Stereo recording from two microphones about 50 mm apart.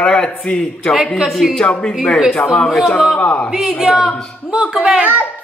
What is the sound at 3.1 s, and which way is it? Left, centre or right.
Speech, left.